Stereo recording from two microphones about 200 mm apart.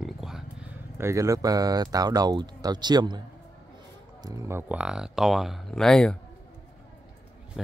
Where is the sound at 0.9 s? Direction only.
15° right (ahead or behind).